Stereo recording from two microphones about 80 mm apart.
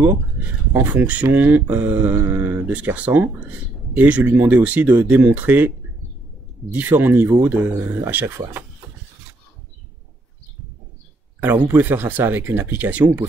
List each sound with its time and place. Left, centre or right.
0.0 s speech: right
6.7 s speech: right
11.6 s speech: right